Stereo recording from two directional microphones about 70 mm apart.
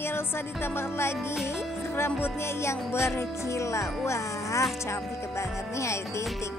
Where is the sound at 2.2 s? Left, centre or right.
Left.